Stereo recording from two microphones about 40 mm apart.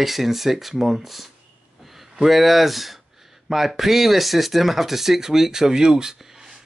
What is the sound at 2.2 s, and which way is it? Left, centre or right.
Speech, centre.